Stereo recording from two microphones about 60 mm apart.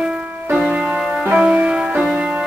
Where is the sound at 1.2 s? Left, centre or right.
Centre.